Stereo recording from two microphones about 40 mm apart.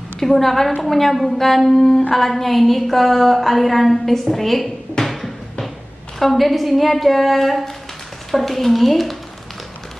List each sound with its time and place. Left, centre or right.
0.2 s a woman's voice: centre
5.0 s music: centre
6.1 s a woman's voice: centre